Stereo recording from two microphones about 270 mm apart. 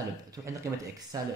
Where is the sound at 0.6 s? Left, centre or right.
Centre.